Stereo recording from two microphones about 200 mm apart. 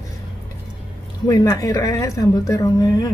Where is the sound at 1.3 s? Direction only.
15° left (ahead or behind).